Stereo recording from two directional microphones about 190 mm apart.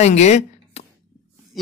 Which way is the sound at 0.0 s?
35° left (ahead or behind).